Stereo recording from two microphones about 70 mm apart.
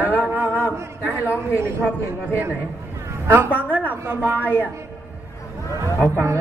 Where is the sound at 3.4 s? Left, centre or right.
Left.